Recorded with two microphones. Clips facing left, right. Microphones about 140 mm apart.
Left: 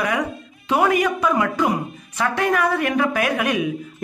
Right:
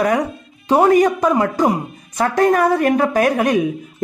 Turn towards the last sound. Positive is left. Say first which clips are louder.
# right 6 dB
turn(degrees=-35)  # may be behind; listen again after turning